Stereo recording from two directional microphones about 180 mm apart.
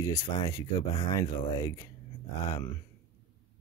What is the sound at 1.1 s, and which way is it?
Speech, 20° left (ahead or behind).